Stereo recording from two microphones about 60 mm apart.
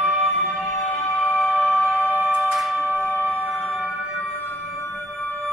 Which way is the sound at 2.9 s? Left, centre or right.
Right.